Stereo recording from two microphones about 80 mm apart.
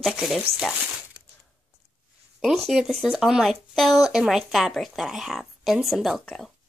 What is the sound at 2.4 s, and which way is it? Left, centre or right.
Speech, centre.